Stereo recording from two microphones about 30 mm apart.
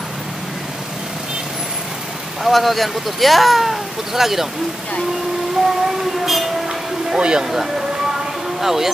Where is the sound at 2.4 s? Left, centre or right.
Centre.